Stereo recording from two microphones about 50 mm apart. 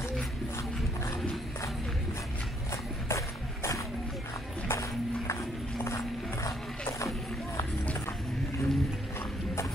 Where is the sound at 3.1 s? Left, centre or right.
Left.